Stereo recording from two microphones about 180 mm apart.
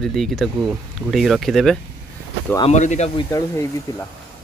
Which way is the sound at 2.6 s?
40° left (ahead or behind).